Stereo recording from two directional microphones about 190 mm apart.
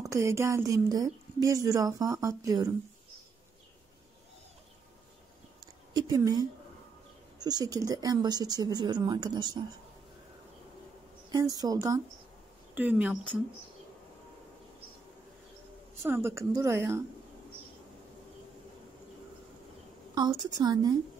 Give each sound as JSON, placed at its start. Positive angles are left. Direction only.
{"t": 0.0, "sound": "speech", "side_deg": -15}
{"t": 5.9, "sound": "speech", "side_deg": -20}
{"t": 11.3, "sound": "speech", "side_deg": -20}
{"t": 12.7, "sound": "speech", "side_deg": -10}
{"t": 16.0, "sound": "speech", "side_deg": -15}
{"t": 20.2, "sound": "speech", "side_deg": -20}